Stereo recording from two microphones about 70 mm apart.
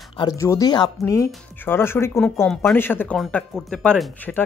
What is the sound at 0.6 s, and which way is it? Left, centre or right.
Speech, left.